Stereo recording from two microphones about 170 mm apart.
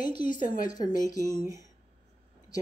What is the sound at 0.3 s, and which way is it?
Speech, 55° left (ahead or behind).